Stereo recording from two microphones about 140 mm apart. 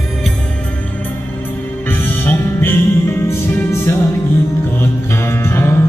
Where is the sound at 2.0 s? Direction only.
15° left (ahead or behind).